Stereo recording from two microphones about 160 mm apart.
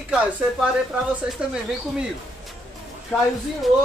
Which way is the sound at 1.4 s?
5° right (ahead or behind).